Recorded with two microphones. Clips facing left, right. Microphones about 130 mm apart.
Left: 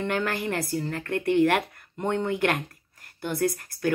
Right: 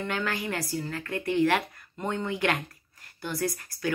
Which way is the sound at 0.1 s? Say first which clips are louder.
Left 2 dB; 50° left (ahead or behind).